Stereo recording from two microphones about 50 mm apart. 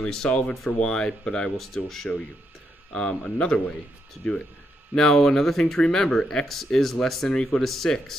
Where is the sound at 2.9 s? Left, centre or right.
Centre.